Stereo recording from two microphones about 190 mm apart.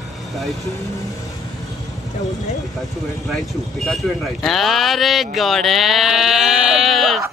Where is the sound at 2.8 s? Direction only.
Centre (ahead or behind).